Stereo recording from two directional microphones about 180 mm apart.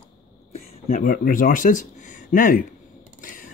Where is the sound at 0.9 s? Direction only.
50° left (ahead or behind).